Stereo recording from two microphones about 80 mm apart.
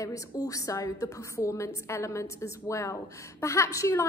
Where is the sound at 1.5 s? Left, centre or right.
Left.